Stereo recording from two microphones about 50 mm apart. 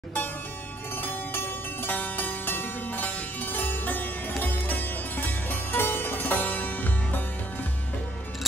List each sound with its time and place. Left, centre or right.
1.0 s music: left